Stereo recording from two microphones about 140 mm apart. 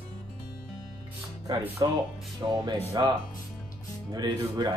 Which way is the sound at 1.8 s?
30° right (ahead or behind).